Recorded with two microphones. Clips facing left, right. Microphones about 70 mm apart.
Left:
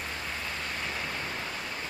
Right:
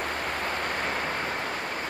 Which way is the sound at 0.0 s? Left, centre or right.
Right.